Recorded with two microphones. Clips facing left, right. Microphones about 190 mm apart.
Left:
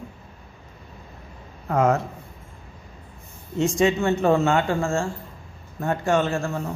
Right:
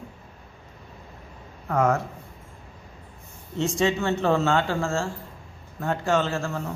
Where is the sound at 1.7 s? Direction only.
20° left (ahead or behind).